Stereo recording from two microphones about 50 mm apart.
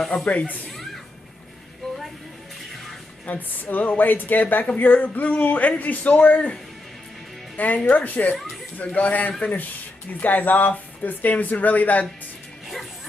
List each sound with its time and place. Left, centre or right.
0.1 s speech: left
3.3 s speech: left
7.5 s speech: left